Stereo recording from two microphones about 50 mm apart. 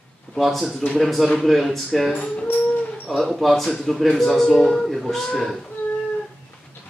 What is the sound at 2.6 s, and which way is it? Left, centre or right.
Dog, left.